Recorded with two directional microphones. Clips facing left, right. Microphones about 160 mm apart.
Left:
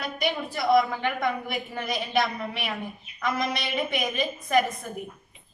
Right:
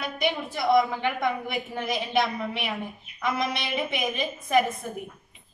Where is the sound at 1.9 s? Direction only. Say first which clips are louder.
Even; 25° right (ahead or behind).